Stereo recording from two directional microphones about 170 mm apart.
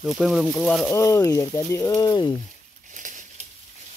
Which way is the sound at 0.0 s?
Centre (ahead or behind).